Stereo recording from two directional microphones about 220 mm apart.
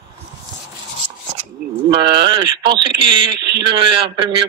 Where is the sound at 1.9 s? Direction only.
20° right (ahead or behind).